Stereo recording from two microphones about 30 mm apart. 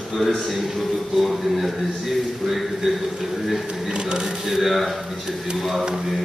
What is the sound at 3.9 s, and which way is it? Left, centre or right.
Speech, right.